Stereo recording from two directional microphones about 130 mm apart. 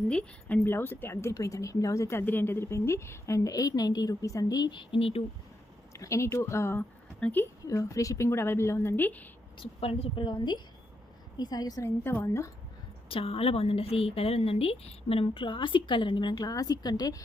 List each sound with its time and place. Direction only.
0.1 s speech: 10° left (ahead or behind); by 5.2 s 45° left (ahead or behind)
5.9 s speech: 25° left (ahead or behind)
7.6 s speech: 25° left (ahead or behind)
9.6 s a woman's voice: 50° left (ahead or behind); by 11.9 s 30° left (ahead or behind)
12.0 s a woman's voice: 15° left (ahead or behind)
13.1 s speech: 45° left (ahead or behind); by 17.2 s 30° left (ahead or behind)